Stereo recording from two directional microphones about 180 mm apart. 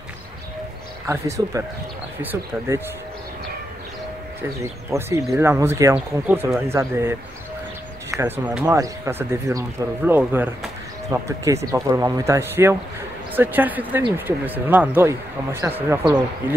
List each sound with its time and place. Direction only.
1.0 s speech: 15° right (ahead or behind)
4.4 s speech: 15° right (ahead or behind)